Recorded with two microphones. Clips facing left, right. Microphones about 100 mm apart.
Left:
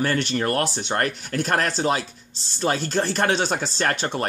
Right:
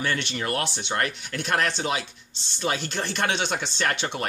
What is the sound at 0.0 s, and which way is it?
Speech, 40° left (ahead or behind).